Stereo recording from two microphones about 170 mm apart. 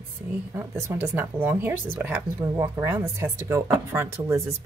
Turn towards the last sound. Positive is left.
turn(degrees=-15)  # may be behind; listen again after turning